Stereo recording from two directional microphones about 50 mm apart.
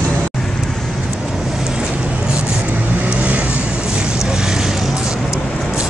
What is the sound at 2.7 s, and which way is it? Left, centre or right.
Vehicle, right.